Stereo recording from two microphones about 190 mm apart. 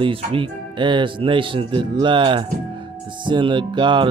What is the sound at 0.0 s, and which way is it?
Speech, 30° right (ahead or behind).